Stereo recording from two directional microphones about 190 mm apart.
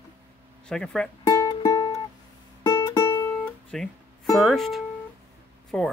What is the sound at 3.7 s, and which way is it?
Speech, centre (ahead or behind).